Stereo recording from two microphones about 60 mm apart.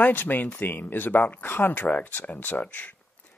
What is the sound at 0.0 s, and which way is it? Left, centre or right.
Speech, left.